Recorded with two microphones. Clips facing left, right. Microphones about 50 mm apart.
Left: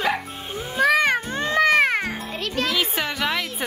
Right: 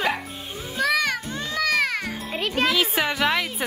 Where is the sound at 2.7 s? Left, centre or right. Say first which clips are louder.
Right 2 dB; centre.